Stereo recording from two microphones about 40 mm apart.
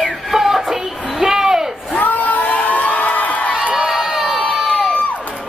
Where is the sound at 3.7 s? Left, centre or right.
Right.